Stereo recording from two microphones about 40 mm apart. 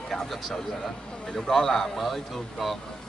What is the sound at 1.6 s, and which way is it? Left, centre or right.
Speech, centre.